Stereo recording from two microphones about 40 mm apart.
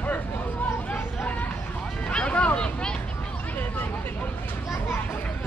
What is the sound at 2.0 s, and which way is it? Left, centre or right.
Speech, left.